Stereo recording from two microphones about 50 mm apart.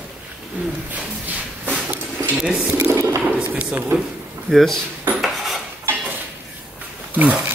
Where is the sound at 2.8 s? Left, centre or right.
Right.